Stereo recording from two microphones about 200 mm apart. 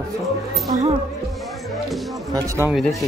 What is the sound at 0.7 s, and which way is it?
Speech, 35° right (ahead or behind).